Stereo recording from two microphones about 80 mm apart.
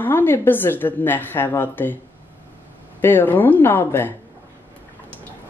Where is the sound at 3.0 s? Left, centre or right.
Left.